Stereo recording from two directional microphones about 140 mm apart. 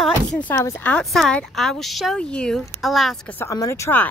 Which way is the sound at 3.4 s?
20° left (ahead or behind).